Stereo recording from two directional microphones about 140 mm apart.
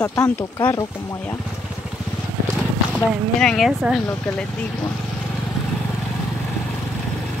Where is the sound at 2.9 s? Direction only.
5° left (ahead or behind).